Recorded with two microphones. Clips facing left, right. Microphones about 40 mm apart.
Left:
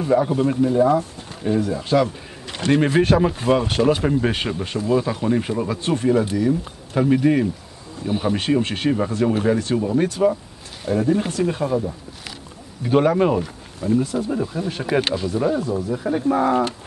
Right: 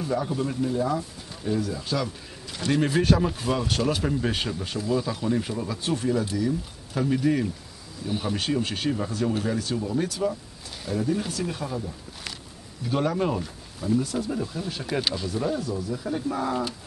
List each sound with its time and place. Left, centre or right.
0.0 s speech: left
2.4 s bird: left
2.8 s speech: left
13.8 s speech: centre; by 16.6 s left